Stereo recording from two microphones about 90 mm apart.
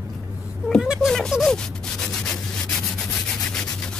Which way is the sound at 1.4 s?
5° left (ahead or behind).